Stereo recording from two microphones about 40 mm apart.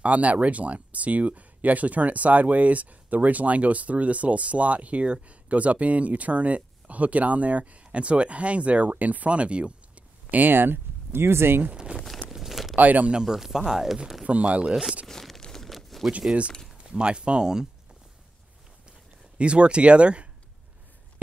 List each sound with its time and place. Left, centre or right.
0.0 s speech: right
10.3 s speech: right
11.7 s speech: right
12.3 s crumpling: centre
12.7 s speech: right
13.2 s speech: centre
14.2 s speech: right
14.7 s speech: centre
15.0 s tearing: centre
15.7 s a sound: centre
16.9 s speech: right
19.3 s speech: right